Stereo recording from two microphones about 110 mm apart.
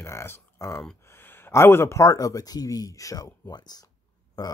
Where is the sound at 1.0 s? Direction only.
20° left (ahead or behind).